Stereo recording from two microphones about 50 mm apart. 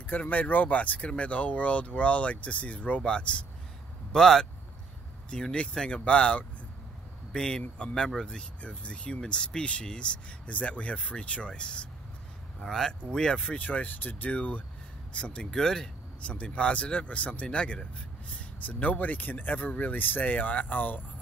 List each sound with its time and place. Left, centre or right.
0.2 s speech: left
4.1 s speech: centre
5.3 s speech: left
12.5 s speech: centre
13.6 s speech: left
15.5 s speech: centre
16.2 s speech: left
18.7 s speech: left